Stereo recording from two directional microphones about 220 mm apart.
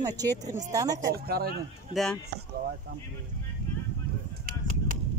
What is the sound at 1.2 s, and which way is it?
Speech, 45° right (ahead or behind).